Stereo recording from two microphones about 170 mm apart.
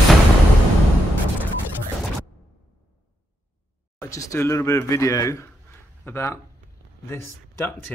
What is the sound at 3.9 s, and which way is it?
Speech, 20° left (ahead or behind).